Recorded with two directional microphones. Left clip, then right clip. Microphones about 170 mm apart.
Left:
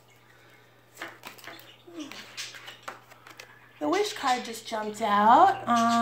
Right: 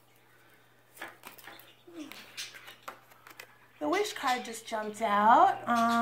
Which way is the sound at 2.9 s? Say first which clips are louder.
Left 4 dB; 5° left (ahead or behind).